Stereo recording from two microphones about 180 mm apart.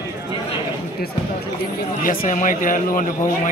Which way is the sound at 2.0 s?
50° left (ahead or behind).